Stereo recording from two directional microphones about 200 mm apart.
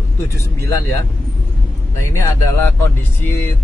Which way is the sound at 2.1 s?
15° left (ahead or behind).